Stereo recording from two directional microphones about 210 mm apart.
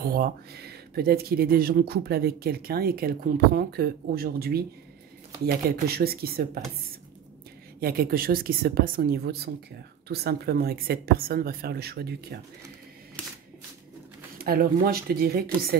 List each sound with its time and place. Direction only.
0.0 s speech: 45° right (ahead or behind)
5.9 s speech: 45° right (ahead or behind)
7.8 s speech: 45° right (ahead or behind)
13.2 s shuffling cards: 5° left (ahead or behind)
14.4 s speech: 45° right (ahead or behind)